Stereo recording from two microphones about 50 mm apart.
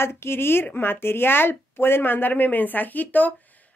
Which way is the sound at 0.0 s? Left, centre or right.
Left.